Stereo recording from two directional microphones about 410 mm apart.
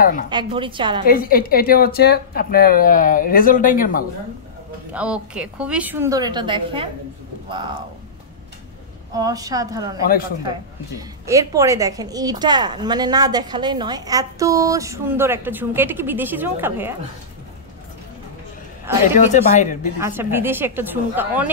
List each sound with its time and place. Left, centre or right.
0.3 s a woman's voice: centre
1.0 s speech: left
4.9 s a woman's voice: centre
9.1 s a woman's voice: centre
10.0 s speech: left
11.0 s a woman's voice: centre
19.1 s speech: centre
20.0 s a woman's voice: centre